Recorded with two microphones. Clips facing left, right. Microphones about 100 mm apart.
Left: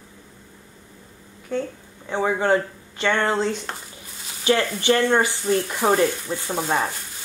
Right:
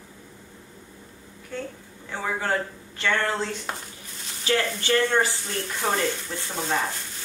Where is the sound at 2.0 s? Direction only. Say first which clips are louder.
Left 7 dB; 25° left (ahead or behind).